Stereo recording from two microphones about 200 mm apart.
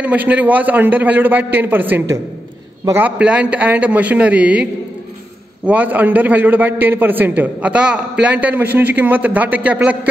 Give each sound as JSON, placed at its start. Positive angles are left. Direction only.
{"t": 0.0, "sound": "a man's voice", "side_deg": -5}
{"t": 5.7, "sound": "a man's voice", "side_deg": -10}